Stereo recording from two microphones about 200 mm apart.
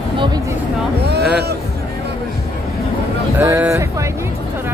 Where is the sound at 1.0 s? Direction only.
55° right (ahead or behind).